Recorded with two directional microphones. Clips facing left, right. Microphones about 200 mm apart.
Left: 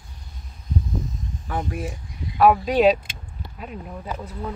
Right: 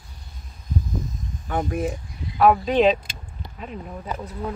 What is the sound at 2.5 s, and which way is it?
Speech, 10° left (ahead or behind).